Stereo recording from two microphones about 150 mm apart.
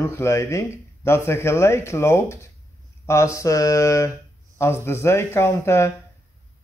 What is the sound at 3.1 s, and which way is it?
Mantra, 20° left (ahead or behind).